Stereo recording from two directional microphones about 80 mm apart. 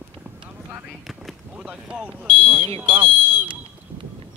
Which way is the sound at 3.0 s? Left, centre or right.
Centre.